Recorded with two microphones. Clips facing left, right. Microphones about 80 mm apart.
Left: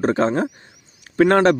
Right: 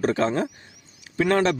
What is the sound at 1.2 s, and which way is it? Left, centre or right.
Speech, left.